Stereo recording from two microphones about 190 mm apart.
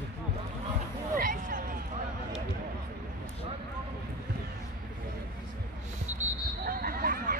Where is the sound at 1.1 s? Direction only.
45° right (ahead or behind).